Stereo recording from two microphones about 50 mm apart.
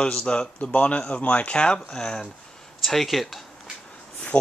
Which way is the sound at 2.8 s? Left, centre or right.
Centre.